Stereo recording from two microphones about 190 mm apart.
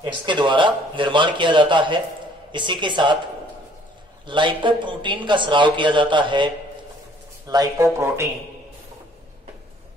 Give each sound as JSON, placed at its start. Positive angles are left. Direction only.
{"t": 0.0, "sound": "speech", "side_deg": -25}
{"t": 4.3, "sound": "speech", "side_deg": -25}